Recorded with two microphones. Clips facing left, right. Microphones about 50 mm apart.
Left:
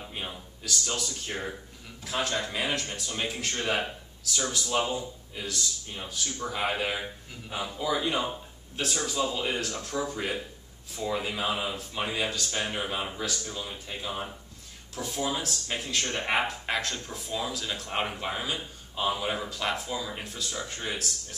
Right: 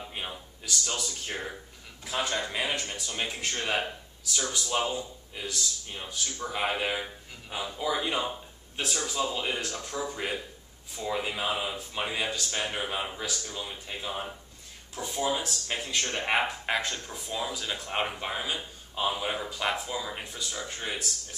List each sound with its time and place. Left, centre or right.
0.1 s speech: centre